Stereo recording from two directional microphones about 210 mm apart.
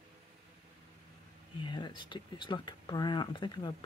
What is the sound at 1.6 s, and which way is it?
Speech, 20° left (ahead or behind).